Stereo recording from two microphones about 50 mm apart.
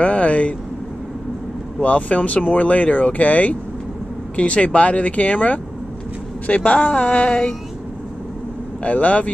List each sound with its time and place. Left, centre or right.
0.0 s vehicle: left
1.8 s speech: left
8.8 s speech: left